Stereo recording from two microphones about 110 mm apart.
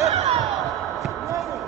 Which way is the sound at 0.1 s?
70° right (ahead or behind).